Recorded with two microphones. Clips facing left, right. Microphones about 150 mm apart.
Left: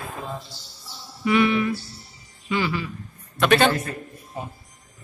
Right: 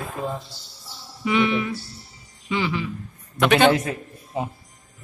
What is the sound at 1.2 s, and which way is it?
A man's voice, 20° right (ahead or behind).